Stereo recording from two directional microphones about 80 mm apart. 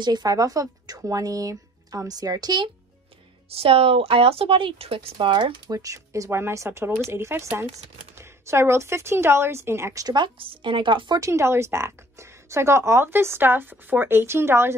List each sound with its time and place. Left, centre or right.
0.0 s speech: right
4.1 s speech: right
5.7 s a woman's voice: right
9.9 s speech: right
11.1 s a woman's voice: right